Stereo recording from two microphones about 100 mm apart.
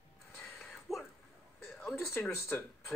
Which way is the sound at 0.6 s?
Centre (ahead or behind).